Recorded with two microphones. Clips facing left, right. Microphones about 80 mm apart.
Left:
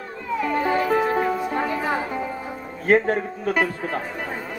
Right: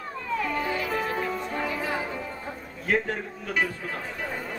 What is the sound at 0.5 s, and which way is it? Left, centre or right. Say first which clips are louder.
Music: left 7 dB; left.